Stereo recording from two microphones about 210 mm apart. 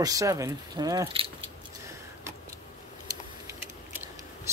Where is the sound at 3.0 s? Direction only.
15° right (ahead or behind).